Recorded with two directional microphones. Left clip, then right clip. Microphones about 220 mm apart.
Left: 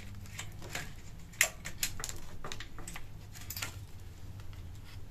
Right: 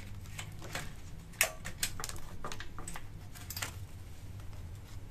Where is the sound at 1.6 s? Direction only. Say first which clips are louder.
Even; 5° right (ahead or behind).